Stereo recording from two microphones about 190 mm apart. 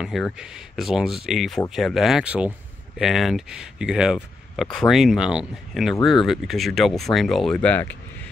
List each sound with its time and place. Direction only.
0.0 s speech: centre (ahead or behind)